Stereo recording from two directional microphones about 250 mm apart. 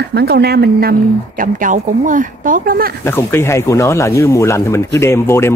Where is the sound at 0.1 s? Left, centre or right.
Right.